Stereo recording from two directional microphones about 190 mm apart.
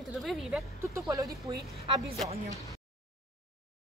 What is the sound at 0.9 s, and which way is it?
Speech, 15° right (ahead or behind).